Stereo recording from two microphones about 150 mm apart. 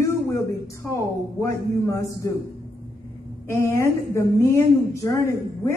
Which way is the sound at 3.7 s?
20° left (ahead or behind).